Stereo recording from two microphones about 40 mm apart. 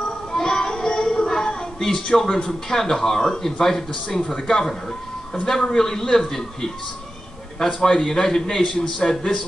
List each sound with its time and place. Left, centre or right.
0.0 s music: centre
4.3 s a man's voice: centre